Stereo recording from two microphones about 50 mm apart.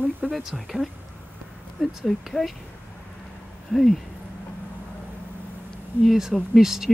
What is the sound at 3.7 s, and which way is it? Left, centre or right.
Speech, centre.